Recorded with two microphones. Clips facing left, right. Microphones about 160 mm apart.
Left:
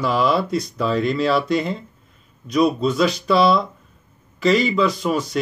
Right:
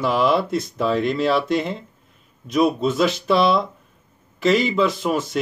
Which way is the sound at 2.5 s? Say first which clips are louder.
Left 1 dB; 50° right (ahead or behind).